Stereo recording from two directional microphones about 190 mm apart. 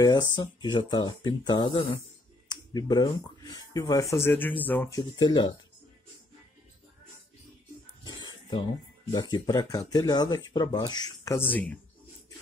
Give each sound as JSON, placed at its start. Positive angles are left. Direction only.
{"t": 0.0, "sound": "speech", "side_deg": 20}
{"t": 8.0, "sound": "a sound", "side_deg": 20}
{"t": 9.1, "sound": "speech", "side_deg": 20}